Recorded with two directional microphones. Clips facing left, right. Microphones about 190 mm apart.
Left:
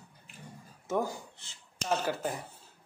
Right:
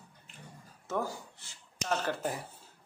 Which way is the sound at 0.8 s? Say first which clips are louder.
Left 3 dB; 20° left (ahead or behind).